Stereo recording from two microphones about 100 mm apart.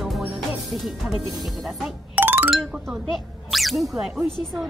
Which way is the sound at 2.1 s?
20° right (ahead or behind).